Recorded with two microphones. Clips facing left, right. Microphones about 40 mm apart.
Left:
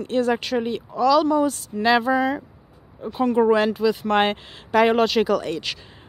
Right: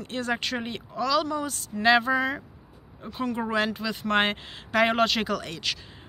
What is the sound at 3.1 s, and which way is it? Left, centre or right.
Speech, centre.